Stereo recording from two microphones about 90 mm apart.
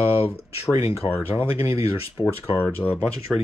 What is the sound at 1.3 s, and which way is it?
Speech, 85° left.